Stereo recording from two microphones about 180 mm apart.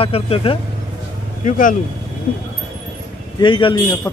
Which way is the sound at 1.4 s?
45° left (ahead or behind).